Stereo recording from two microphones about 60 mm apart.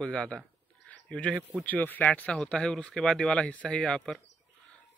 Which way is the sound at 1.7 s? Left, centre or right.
Left.